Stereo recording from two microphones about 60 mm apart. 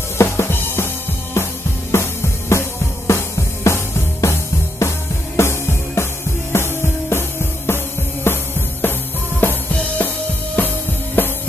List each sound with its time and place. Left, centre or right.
0.2 s music: left
9.7 s drum kit: left
11.2 s music: left